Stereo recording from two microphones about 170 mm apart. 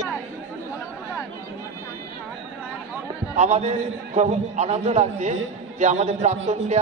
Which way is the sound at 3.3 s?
40° right (ahead or behind).